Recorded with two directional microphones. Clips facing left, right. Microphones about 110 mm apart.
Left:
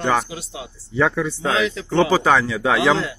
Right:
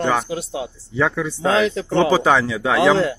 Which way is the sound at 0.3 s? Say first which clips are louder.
Right 8 dB; 40° right (ahead or behind).